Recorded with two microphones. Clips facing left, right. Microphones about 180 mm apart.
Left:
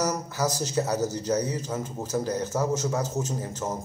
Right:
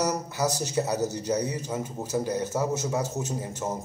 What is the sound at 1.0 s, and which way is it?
Speech, 65° right (ahead or behind).